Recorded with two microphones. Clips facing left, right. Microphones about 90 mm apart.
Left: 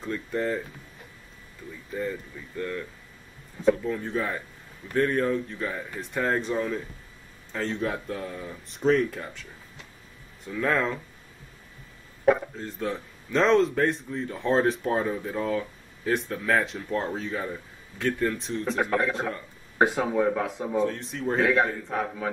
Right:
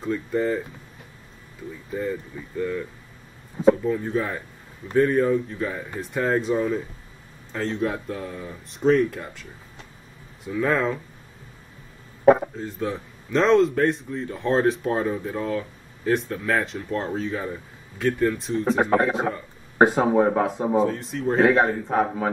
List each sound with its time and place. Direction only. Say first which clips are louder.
0.0 s speech: right 5 dB; centre (ahead or behind)
2.0 s speech: right 3 dB; 5° right (ahead or behind)
12.5 s speech: right 3 dB; centre (ahead or behind)
18.8 s speech: right 4 dB; 35° right (ahead or behind)
19.1 s a man's voice: right 5 dB; 10° right (ahead or behind)
19.8 s speech: right 5 dB; 35° right (ahead or behind)
20.8 s speech: right 4 dB; centre (ahead or behind)
21.4 s speech: right 5 dB; 35° right (ahead or behind)